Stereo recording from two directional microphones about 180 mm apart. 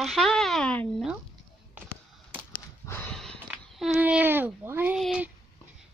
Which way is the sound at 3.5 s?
5° right (ahead or behind).